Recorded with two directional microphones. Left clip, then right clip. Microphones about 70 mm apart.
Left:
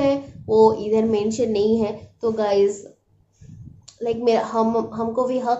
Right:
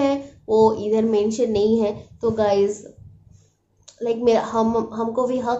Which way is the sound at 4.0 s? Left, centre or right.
Right.